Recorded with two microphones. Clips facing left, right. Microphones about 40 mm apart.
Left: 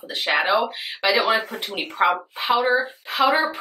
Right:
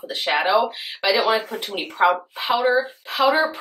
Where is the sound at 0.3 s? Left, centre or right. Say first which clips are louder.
Right 1 dB; centre.